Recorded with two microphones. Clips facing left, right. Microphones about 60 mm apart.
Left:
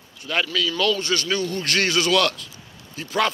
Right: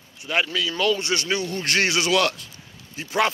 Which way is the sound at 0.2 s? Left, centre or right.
Centre.